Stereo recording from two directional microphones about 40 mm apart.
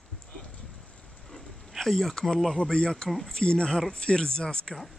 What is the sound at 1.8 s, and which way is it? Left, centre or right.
Speech, centre.